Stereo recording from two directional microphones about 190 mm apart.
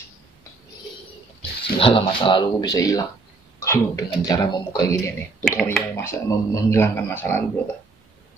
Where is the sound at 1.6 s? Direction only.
30° left (ahead or behind); by 7.4 s 10° left (ahead or behind).